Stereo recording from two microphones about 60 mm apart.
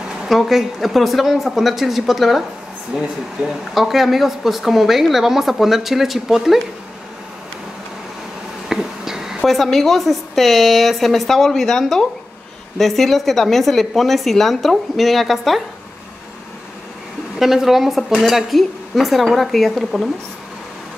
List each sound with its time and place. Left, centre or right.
0.3 s speech: centre
3.4 s speech: centre
8.6 s a sound: centre
9.5 s speech: centre
17.4 s speech: centre